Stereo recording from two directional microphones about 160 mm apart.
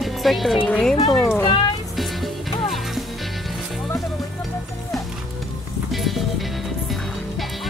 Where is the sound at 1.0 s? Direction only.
25° left (ahead or behind).